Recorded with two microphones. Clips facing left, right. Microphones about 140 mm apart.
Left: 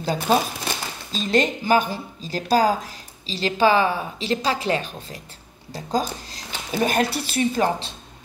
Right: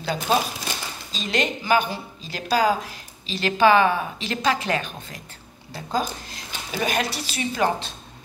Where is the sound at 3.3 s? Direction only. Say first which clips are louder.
Right 1 dB; 30° left (ahead or behind); by 7.6 s 50° left (ahead or behind).